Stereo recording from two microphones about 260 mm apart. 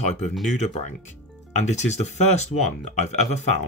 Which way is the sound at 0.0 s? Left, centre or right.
Left.